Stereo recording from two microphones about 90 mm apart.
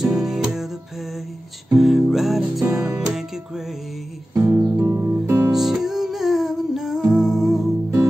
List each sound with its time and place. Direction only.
0.0 s music: 5° right (ahead or behind)
1.7 s music: centre (ahead or behind)
4.3 s music: 30° right (ahead or behind)
5.5 s music: 5° right (ahead or behind)